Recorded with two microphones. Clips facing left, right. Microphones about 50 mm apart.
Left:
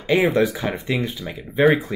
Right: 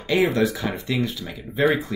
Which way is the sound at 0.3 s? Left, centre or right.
Left.